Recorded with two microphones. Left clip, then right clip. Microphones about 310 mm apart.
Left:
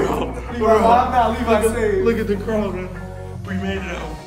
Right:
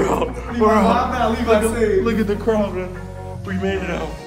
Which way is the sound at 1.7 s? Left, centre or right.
Centre.